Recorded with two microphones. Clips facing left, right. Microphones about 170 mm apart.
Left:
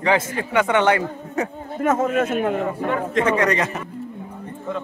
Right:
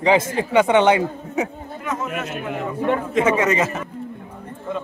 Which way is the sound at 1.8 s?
50° left (ahead or behind).